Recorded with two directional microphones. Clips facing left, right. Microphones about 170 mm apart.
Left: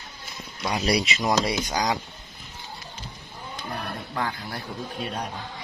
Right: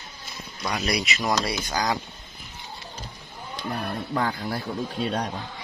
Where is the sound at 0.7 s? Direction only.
30° left (ahead or behind).